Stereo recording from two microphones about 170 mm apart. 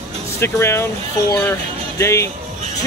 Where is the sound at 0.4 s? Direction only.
15° left (ahead or behind).